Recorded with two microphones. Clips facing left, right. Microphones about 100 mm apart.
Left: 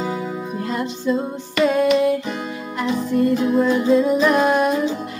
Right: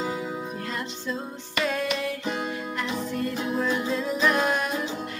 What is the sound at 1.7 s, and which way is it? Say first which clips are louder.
Music: left 13 dB; 15° left (ahead or behind).